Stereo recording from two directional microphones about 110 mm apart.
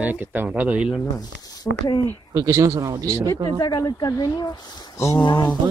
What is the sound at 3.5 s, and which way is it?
Speech, 35° left (ahead or behind).